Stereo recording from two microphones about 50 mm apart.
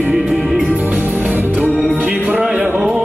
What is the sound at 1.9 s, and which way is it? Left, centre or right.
Music, right.